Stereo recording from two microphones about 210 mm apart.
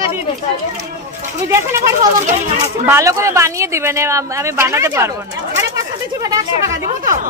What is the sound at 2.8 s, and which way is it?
A woman's voice, 15° right (ahead or behind).